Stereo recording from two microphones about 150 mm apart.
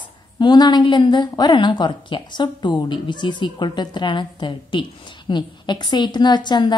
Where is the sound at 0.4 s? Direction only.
30° left (ahead or behind).